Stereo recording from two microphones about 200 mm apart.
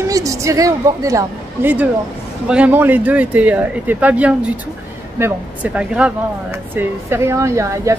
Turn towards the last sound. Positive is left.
turn(degrees=-15)  # may be behind; listen again after turning